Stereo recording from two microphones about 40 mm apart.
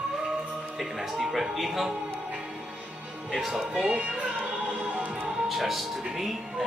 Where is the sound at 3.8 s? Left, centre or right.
Right.